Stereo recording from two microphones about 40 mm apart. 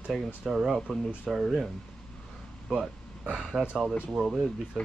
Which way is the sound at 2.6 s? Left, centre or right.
Centre.